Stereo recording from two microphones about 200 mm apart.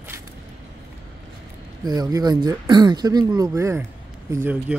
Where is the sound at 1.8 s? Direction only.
20° right (ahead or behind).